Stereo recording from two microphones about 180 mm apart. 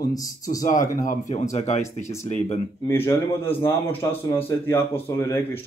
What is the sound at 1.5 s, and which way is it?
Speech, 40° left (ahead or behind).